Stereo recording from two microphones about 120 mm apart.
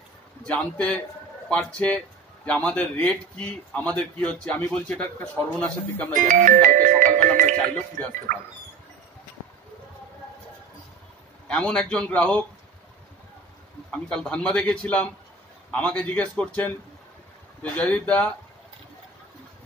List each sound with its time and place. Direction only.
0.5 s a man's voice: 10° left (ahead or behind)
6.1 s speech: 90° right
7.5 s a man's voice: 10° left (ahead or behind)
11.4 s a man's voice: 5° left (ahead or behind)
13.9 s a man's voice: 5° left (ahead or behind)